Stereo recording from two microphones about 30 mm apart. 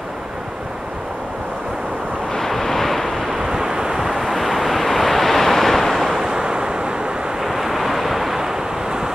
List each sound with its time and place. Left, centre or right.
2.3 s vehicle: centre
3.3 s waves: centre
4.0 s waves: centre
6.2 s waves: right
7.4 s waves: centre
8.4 s vehicle: centre